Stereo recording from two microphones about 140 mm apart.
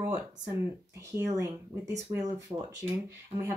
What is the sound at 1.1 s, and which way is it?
Speech, 25° right (ahead or behind).